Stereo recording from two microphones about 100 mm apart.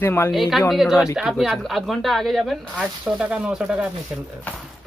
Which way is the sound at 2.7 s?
10° right (ahead or behind).